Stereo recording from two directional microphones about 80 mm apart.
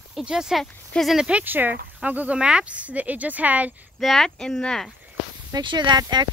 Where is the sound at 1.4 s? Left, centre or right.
Right.